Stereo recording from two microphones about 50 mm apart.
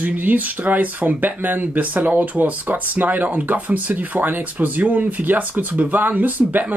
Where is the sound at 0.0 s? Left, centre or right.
Right.